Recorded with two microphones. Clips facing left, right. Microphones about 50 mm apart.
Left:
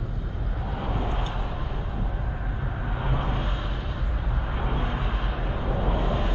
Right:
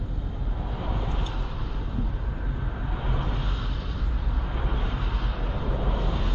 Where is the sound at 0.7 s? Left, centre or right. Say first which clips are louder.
Left 3 dB; centre.